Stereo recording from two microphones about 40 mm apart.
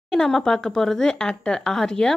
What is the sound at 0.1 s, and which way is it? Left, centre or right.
A woman's voice, centre.